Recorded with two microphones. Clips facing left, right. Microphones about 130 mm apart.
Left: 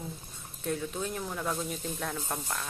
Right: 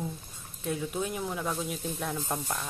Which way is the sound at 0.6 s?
5° right (ahead or behind).